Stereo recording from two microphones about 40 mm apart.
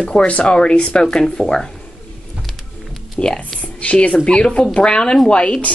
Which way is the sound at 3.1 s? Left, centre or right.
Left.